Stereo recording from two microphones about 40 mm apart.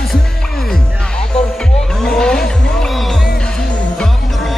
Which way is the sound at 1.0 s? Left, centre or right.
Left.